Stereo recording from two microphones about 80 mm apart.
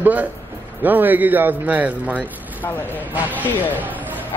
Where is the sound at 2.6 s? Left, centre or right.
Left.